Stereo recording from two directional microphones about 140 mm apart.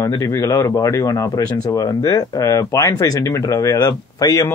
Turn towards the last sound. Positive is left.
turn(degrees=25)  # may be behind; listen again after turning